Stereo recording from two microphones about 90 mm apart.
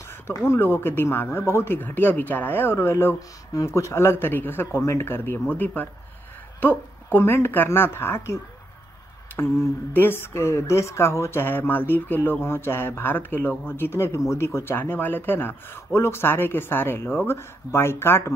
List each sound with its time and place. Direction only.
0.0 s a sound: 30° left (ahead or behind)
0.5 s speech: 25° left (ahead or behind)
3.2 s speech: 35° left (ahead or behind)
9.9 s speech: 25° left (ahead or behind)